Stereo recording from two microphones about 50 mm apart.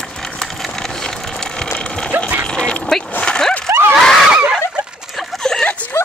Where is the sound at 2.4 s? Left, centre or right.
Centre.